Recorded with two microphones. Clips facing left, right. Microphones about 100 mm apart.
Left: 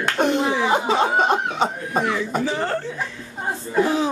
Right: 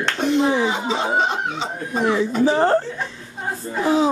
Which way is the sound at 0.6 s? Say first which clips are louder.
Left 3 dB; 55° left (ahead or behind).